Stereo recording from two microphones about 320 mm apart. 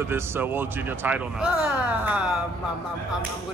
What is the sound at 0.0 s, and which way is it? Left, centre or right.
A man's voice, centre.